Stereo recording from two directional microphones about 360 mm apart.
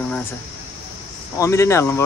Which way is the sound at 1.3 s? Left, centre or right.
Centre.